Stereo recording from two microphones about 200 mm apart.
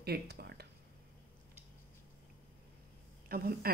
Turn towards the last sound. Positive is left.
turn(degrees=-50)  # may be behind; listen again after turning